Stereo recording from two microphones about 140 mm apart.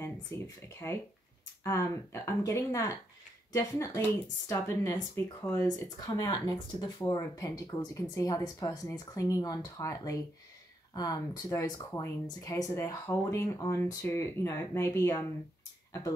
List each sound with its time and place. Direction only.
0.3 s speech: 20° left (ahead or behind)
1.6 s speech: 20° left (ahead or behind)